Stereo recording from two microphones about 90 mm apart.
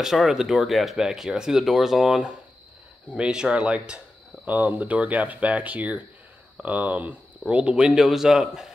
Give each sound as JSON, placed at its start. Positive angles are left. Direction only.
{"t": 0.0, "sound": "speech", "side_deg": -5}